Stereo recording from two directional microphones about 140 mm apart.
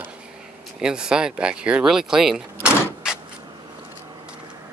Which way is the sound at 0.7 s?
5° right (ahead or behind).